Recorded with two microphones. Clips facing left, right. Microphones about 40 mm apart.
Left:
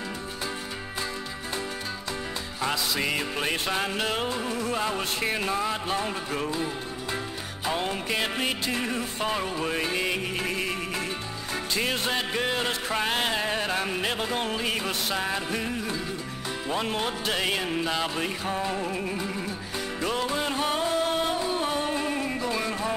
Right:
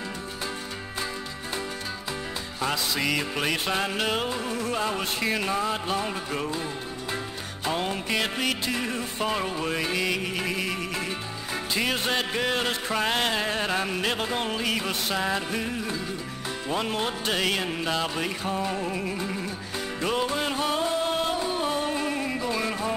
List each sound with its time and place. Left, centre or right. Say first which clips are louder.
3.6 s music: right 1 dB; centre
9.9 s music: right 1 dB; centre
10.3 s music: even; centre
13.1 s music: right 1 dB; centre
20.5 s music: even; centre